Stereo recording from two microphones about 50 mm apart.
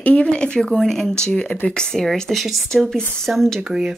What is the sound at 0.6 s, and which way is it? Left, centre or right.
Speech, centre.